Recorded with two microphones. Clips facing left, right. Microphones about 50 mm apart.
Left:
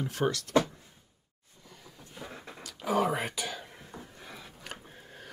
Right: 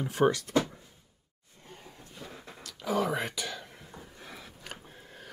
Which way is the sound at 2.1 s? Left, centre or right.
Centre.